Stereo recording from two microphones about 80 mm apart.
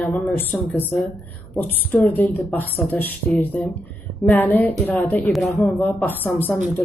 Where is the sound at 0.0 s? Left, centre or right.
Left.